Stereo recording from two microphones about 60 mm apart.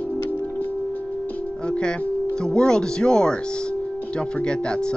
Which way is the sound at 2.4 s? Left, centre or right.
Centre.